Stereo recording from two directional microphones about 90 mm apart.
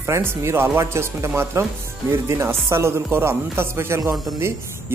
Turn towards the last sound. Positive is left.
turn(degrees=-30)  # may be behind; listen again after turning